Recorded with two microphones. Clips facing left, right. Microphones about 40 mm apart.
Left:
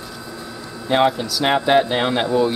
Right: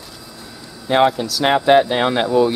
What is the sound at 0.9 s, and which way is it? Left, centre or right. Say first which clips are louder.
Speech: right 2 dB; centre.